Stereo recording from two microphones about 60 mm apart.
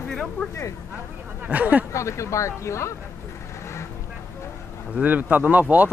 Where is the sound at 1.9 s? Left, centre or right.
Left.